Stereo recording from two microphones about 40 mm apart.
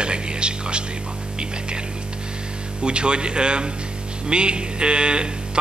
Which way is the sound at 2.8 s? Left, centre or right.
Right.